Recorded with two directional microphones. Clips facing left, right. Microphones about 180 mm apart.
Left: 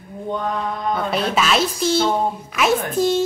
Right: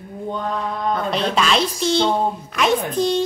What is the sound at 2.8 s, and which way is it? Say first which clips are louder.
Speech: left 1 dB; 5° left (ahead or behind).